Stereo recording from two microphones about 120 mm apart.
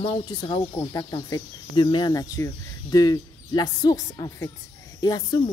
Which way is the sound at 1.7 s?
40° left (ahead or behind).